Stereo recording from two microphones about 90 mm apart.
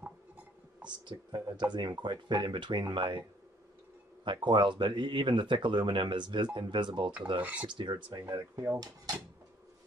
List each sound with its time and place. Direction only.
0.8 s speech: 55° right (ahead or behind)
7.3 s cutlery: 15° right (ahead or behind)
7.6 s speech: 60° right (ahead or behind); by 9.1 s 45° right (ahead or behind)